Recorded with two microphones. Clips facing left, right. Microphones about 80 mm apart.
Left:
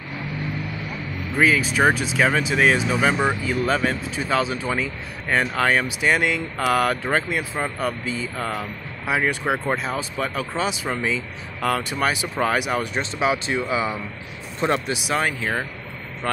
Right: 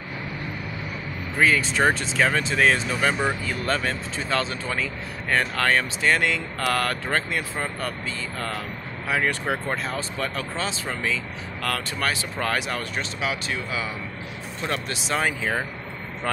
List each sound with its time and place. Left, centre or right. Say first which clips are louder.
1.4 s speech: left 2 dB; centre
13.2 s speech: left 8 dB; left
14.9 s speech: left 3 dB; centre
15.1 s speech: even; centre